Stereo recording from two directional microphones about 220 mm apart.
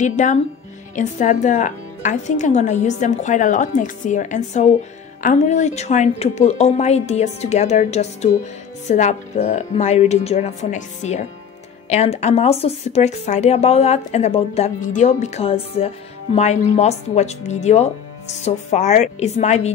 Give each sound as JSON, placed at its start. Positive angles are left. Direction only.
{"t": 0.0, "sound": "a woman's voice", "side_deg": 35}